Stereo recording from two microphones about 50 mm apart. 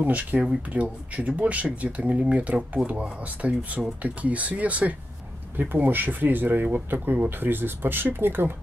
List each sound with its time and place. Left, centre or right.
0.0 s speech: right